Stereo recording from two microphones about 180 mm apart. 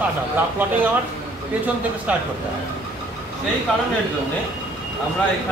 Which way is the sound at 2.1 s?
5° right (ahead or behind).